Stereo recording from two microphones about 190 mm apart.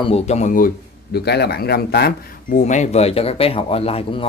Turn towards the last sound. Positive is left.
turn(degrees=30)  # may be behind; listen again after turning